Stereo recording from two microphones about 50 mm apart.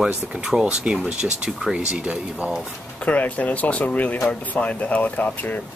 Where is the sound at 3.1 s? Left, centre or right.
Left.